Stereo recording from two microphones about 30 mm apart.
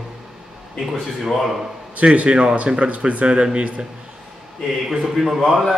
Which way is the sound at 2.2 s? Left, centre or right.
Right.